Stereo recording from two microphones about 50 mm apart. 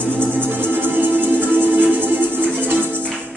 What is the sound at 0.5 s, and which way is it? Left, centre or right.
Music, right.